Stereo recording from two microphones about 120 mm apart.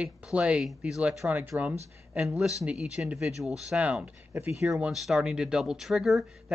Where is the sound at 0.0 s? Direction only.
10° right (ahead or behind).